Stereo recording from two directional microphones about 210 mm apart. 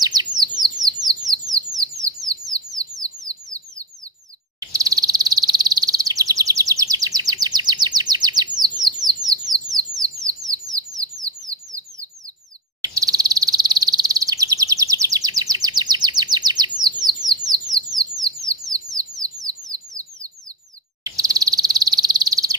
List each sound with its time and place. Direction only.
0.0 s bird: 20° right (ahead or behind)
4.6 s bird vocalization: 15° right (ahead or behind)
8.9 s bird: 20° right (ahead or behind)
10.7 s bird: 15° right (ahead or behind)
12.8 s a sound: 15° right (ahead or behind)
17.6 s bird: 20° right (ahead or behind)
21.0 s frog: 15° right (ahead or behind)